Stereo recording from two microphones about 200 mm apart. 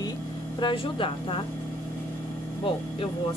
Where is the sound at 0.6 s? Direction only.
25° left (ahead or behind).